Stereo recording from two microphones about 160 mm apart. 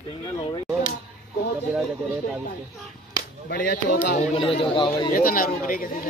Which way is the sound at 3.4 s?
70° left (ahead or behind).